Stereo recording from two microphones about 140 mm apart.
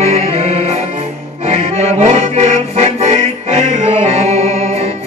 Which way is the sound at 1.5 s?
50° right (ahead or behind).